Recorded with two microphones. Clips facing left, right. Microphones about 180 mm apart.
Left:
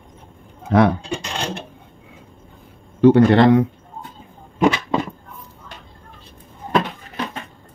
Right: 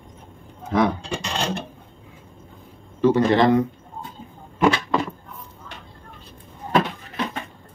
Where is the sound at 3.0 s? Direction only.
65° left (ahead or behind).